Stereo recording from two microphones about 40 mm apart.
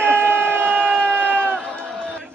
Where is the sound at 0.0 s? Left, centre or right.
Right.